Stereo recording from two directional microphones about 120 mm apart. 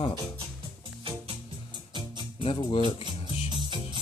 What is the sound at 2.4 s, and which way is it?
Speech, 45° left (ahead or behind).